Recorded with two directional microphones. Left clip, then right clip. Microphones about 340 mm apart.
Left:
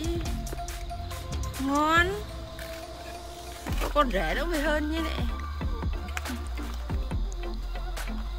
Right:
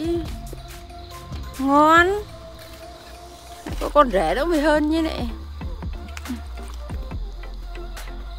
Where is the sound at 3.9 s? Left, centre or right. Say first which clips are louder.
Right 9 dB; centre.